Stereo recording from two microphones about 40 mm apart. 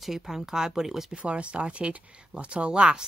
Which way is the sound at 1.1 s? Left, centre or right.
Right.